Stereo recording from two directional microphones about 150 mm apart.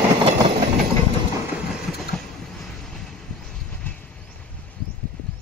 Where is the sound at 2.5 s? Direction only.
5° left (ahead or behind).